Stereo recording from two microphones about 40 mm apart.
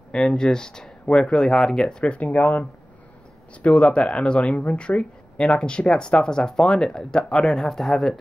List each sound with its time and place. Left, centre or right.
0.1 s speech: left
1.5 s speech: centre
2.0 s speech: left
2.2 s speech: left
3.6 s speech: left; by 8.2 s centre